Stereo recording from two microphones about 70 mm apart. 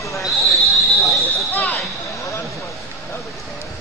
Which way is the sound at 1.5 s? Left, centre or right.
Left.